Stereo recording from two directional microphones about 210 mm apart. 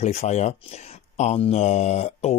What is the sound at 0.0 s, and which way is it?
Speech, 30° left (ahead or behind).